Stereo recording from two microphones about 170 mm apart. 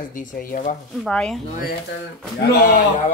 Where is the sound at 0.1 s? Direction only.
50° left (ahead or behind).